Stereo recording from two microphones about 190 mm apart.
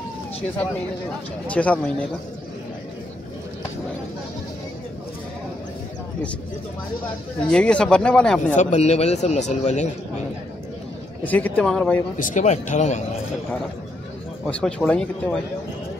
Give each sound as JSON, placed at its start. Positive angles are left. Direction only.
{"t": 1.5, "sound": "speech", "side_deg": 5}
{"t": 7.4, "sound": "speech", "side_deg": 5}
{"t": 8.5, "sound": "a man's voice", "side_deg": 35}
{"t": 11.2, "sound": "speech", "side_deg": 10}
{"t": 12.2, "sound": "a man's voice", "side_deg": 40}
{"t": 14.4, "sound": "speech", "side_deg": 5}